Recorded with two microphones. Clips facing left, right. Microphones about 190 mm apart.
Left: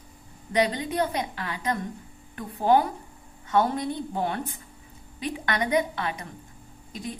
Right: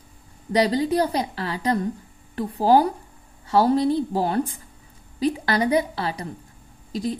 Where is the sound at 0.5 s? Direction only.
35° right (ahead or behind).